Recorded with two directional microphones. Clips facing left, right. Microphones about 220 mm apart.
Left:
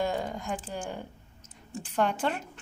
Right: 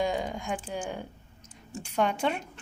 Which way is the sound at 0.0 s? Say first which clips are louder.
Right 1 dB; 5° left (ahead or behind).